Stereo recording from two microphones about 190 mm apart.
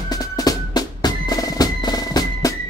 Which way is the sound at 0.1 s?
20° left (ahead or behind).